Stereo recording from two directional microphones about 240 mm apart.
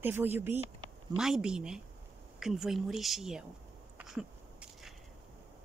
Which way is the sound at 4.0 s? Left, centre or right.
Centre.